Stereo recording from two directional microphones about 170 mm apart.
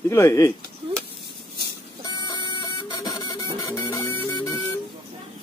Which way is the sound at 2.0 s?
25° left (ahead or behind).